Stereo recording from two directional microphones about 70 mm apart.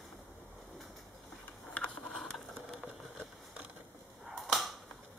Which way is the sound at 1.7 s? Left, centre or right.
Left.